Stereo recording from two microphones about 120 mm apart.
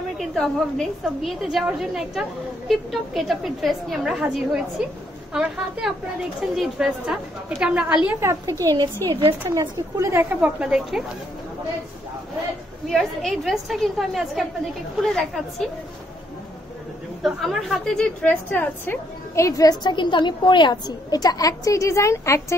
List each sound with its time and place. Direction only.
0.2 s a woman's voice: 5° left (ahead or behind)
8.2 s a woman's voice: 25° right (ahead or behind)
10.3 s a woman's voice: 10° right (ahead or behind)
12.9 s a woman's voice: centre (ahead or behind)
17.2 s a woman's voice: centre (ahead or behind)
19.3 s a woman's voice: 25° left (ahead or behind)